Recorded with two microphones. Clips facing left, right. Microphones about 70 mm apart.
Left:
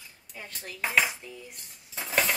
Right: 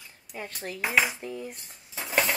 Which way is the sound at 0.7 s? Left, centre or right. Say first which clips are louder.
Right 1 dB; centre.